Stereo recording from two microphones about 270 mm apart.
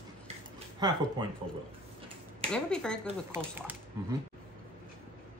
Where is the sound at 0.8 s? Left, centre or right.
Centre.